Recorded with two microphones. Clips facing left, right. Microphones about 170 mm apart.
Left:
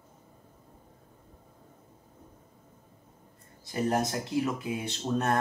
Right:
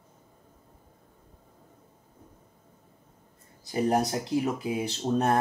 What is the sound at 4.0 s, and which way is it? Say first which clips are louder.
Speech: right 2 dB; 35° right (ahead or behind).